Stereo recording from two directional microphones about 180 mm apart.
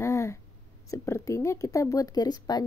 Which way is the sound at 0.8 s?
15° left (ahead or behind).